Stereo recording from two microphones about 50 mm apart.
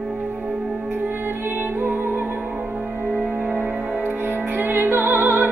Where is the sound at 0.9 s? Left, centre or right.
Right.